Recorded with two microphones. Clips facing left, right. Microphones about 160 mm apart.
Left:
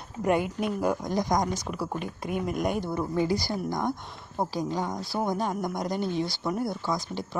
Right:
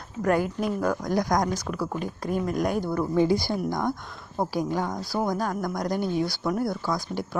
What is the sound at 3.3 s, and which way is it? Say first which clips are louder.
Speech: right 3 dB; 15° left (ahead or behind).